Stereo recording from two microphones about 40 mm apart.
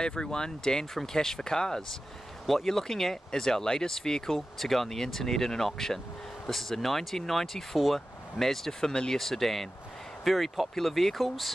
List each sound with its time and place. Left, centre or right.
0.0 s speech: centre